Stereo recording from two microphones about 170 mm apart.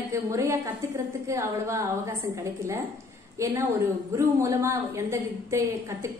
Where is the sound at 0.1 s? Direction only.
15° right (ahead or behind).